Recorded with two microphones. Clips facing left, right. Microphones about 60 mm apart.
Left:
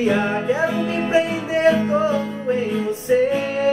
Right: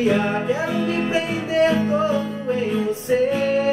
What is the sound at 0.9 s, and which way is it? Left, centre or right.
Music, left.